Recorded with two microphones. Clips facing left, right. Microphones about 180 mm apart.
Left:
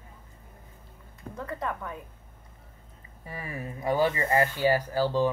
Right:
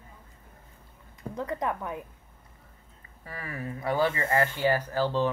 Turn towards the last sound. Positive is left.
turn(degrees=10)  # may be behind; listen again after turning